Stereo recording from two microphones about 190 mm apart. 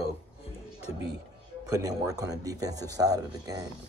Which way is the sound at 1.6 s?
20° right (ahead or behind).